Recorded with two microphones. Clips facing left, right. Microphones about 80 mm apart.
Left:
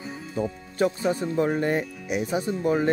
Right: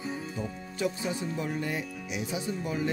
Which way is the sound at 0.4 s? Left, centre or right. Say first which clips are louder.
Left 11 dB; left.